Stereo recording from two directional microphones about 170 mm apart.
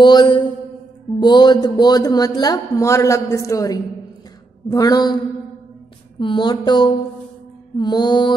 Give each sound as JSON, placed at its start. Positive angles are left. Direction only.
{"t": 0.0, "sound": "speech", "side_deg": 25}
{"t": 6.1, "sound": "speech", "side_deg": 30}